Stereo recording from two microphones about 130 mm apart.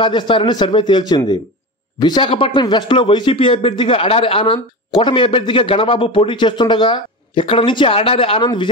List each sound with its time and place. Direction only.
0.0 s speech: 40° left (ahead or behind)